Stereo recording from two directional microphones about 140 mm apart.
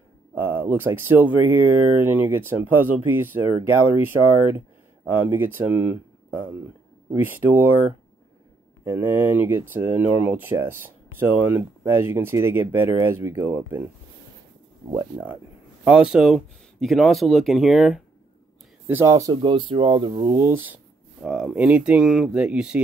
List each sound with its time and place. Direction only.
0.3 s speech: 15° right (ahead or behind)
15.8 s speech: 10° right (ahead or behind)
18.9 s speech: 15° right (ahead or behind)
19.4 s speech: 35° right (ahead or behind)
20.3 s speech: 15° right (ahead or behind)